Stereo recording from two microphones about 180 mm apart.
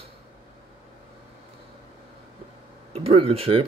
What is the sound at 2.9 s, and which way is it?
Speech, 35° right (ahead or behind).